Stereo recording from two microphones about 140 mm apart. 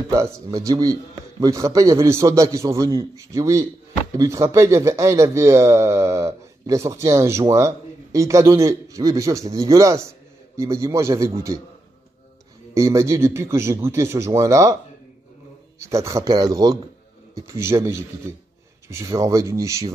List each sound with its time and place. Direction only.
0.1 s speech: 25° right (ahead or behind)
12.7 s speech: 20° right (ahead or behind)
15.8 s speech: 20° right (ahead or behind)